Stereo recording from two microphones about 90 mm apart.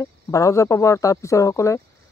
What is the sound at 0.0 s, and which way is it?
Speech, 40° left (ahead or behind).